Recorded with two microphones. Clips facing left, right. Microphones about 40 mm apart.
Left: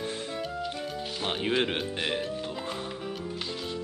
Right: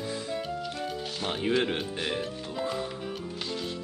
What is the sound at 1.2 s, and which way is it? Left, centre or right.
Speech, left.